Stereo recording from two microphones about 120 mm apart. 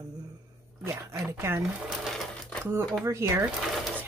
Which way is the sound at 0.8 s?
25° right (ahead or behind).